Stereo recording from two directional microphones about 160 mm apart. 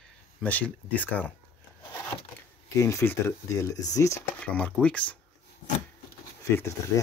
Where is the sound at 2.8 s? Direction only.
20° left (ahead or behind).